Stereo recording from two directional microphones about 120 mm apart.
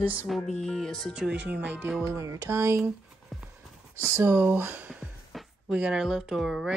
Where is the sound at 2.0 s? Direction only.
25° right (ahead or behind).